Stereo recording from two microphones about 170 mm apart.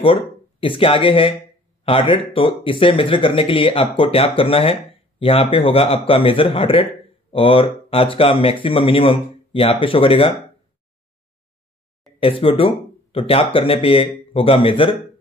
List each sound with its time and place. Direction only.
0.0 s speech: 30° left (ahead or behind)
12.2 s speech: 30° left (ahead or behind)